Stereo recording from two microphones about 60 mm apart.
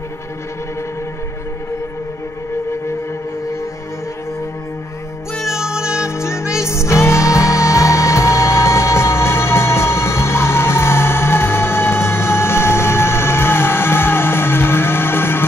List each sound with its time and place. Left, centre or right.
5.4 s music: centre
6.0 s music: left